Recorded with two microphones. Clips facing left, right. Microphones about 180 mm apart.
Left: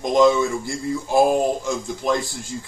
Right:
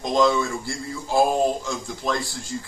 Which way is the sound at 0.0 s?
15° left (ahead or behind).